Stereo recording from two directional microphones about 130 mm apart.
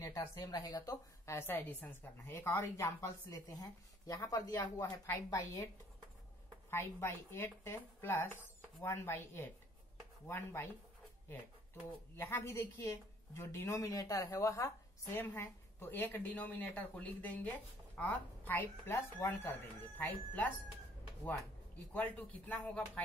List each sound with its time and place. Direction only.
0.0 s a woman's voice: 25° left (ahead or behind)
6.7 s a woman's voice: 20° left (ahead or behind)
12.2 s a woman's voice: 20° left (ahead or behind)
21.9 s speech: 10° left (ahead or behind)